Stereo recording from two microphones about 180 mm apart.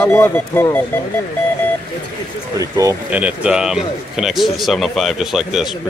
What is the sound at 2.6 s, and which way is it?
Speech, 20° right (ahead or behind).